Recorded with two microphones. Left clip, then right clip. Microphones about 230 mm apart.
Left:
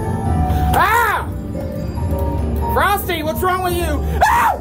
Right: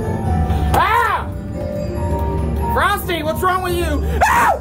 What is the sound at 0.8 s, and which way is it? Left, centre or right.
Music, centre.